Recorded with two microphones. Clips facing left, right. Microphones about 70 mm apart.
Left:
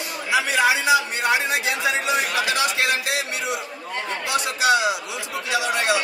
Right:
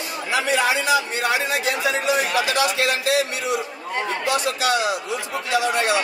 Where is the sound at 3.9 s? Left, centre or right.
Centre.